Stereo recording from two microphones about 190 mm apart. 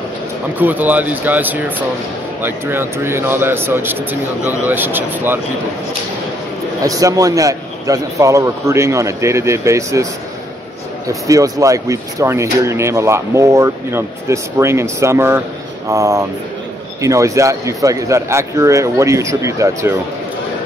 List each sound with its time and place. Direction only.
0.6 s speech: 10° right (ahead or behind)
6.8 s speech: 20° right (ahead or behind)
11.1 s speech: 15° right (ahead or behind)